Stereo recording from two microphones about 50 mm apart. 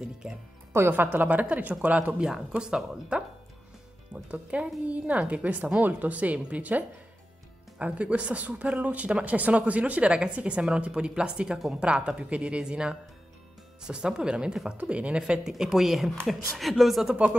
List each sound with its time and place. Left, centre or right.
0.2 s speech: centre
0.9 s speech: right
2.5 s speech: centre
7.8 s speech: right
15.5 s speech: centre
17.1 s speech: right